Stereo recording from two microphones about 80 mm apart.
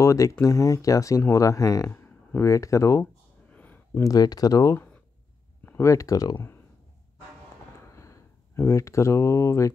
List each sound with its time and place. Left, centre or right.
0.0 s speech: left
1.9 s speech: left
3.0 s a sound: centre
4.0 s speech: left
5.7 s speech: left
6.3 s speech: left
7.9 s speech: left